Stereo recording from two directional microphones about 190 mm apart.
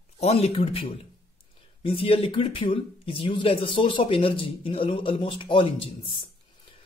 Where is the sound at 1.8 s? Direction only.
30° left (ahead or behind).